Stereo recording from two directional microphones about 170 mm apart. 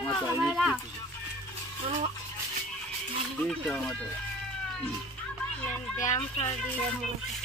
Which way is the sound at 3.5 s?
Centre (ahead or behind).